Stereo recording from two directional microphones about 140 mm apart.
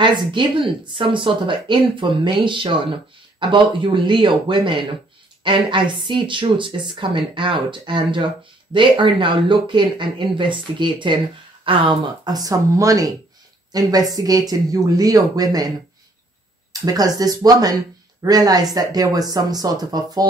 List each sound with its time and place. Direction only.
0.0 s speech: 35° right (ahead or behind)
16.8 s speech: 25° right (ahead or behind)